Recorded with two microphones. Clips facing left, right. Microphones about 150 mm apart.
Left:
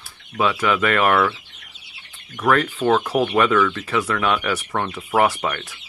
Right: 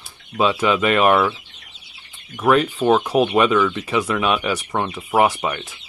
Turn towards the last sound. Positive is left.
turn(degrees=-15)  # may be behind; listen again after turning